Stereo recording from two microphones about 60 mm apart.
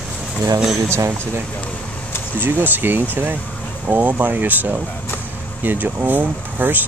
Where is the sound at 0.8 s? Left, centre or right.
Right.